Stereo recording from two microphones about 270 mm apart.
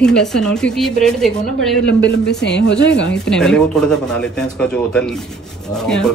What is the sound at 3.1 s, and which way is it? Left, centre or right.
Speech, centre.